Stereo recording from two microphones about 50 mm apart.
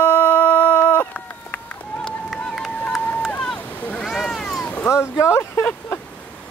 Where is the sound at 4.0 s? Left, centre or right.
Centre.